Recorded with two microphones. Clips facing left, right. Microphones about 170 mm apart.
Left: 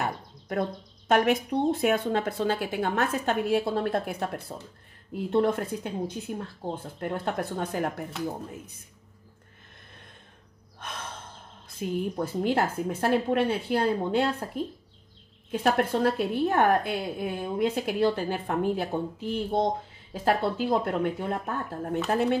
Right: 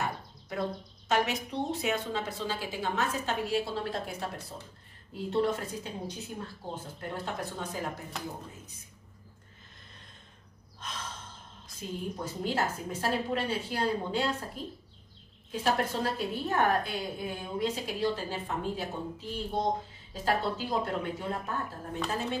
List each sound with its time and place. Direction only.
0.0 s speech: 55° left (ahead or behind)
10.8 s gasp: 60° left (ahead or behind)
11.8 s speech: 60° left (ahead or behind)
15.5 s speech: 55° left (ahead or behind)